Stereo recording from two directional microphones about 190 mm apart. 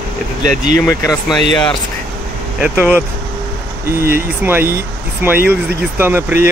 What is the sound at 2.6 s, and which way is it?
Speech, 10° right (ahead or behind).